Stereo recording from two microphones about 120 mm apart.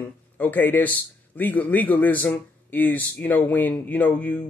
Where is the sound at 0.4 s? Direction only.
15° left (ahead or behind).